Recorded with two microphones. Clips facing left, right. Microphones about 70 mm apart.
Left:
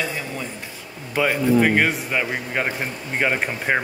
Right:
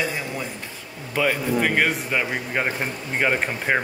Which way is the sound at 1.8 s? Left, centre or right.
Centre.